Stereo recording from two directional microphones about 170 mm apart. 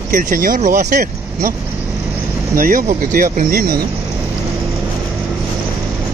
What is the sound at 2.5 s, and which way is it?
Speech, 55° right (ahead or behind).